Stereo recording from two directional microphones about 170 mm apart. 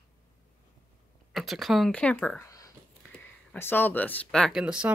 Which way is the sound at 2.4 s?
20° left (ahead or behind).